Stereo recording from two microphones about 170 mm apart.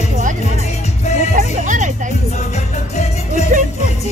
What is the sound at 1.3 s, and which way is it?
Music, 50° right (ahead or behind).